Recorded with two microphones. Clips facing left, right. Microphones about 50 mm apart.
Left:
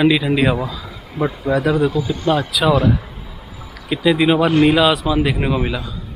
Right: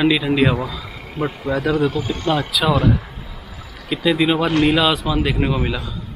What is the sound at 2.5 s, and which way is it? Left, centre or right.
A man's voice, centre.